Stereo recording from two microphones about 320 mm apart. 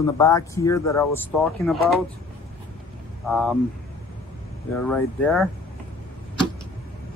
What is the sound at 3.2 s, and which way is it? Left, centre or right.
Speech, centre.